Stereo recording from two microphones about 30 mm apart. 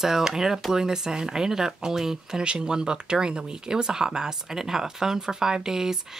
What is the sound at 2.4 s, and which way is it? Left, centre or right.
Speech, right.